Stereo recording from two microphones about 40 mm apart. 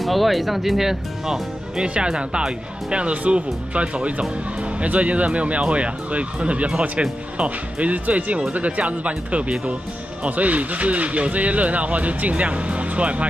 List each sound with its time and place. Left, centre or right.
0.0 s speech: centre
2.0 s speech: right